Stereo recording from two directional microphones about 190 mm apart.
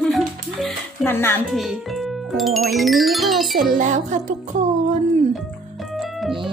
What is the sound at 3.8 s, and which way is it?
Music, 40° right (ahead or behind).